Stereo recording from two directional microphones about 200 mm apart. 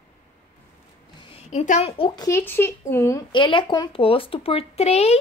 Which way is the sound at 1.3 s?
35° left (ahead or behind).